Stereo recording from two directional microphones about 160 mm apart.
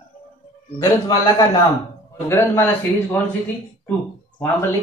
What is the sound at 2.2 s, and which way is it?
Speech, 15° left (ahead or behind).